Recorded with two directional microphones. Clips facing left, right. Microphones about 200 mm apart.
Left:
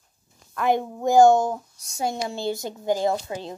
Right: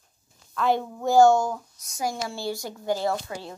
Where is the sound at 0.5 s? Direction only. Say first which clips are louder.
Left 2 dB; 15° left (ahead or behind).